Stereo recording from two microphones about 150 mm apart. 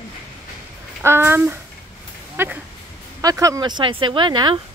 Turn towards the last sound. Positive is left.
turn(degrees=-30)  # may be behind; listen again after turning